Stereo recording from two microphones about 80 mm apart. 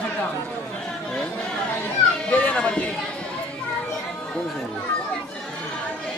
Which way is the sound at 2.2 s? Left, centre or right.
Centre.